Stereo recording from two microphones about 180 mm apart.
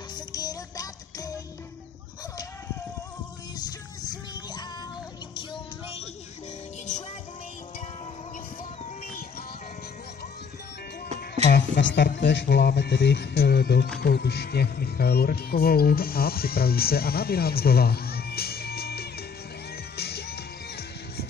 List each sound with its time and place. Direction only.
0.1 s music: 20° left (ahead or behind)
3.5 s music: 20° left (ahead or behind)
11.5 s speech: 70° left (ahead or behind)
20.0 s music: 60° left (ahead or behind)